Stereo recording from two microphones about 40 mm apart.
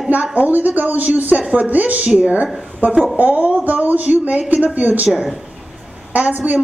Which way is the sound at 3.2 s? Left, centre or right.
Right.